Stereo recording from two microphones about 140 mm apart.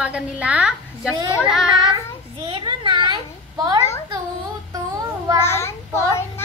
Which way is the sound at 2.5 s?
35° right (ahead or behind).